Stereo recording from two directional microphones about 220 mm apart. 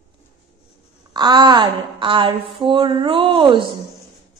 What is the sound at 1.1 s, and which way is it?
Speech, 20° right (ahead or behind).